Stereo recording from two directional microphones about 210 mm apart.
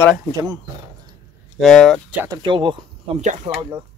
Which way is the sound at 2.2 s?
20° right (ahead or behind).